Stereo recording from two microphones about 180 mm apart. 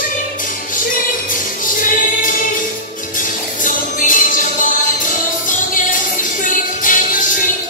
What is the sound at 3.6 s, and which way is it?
Music, 45° left (ahead or behind).